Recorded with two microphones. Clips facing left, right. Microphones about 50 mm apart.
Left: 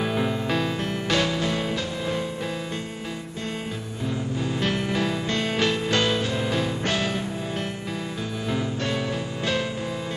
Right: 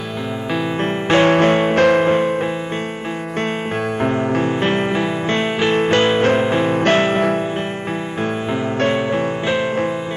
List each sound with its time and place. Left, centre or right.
1.0 s music: right
1.3 s music: right
4.0 s music: right
4.6 s music: right
6.7 s music: right
8.8 s music: right